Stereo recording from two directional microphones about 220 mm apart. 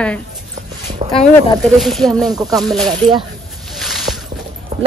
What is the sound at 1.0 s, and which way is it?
Speech, 25° right (ahead or behind).